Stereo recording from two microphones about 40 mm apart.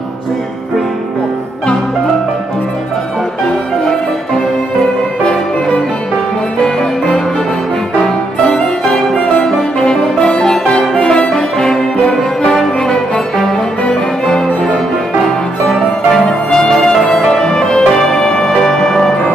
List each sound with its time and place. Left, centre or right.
8.8 s music: centre
11.6 s music: centre
16.2 s music: centre